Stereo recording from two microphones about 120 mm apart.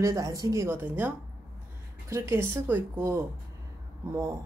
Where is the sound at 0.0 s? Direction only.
30° right (ahead or behind).